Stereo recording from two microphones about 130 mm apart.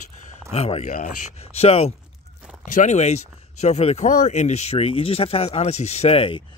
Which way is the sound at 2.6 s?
70° left (ahead or behind).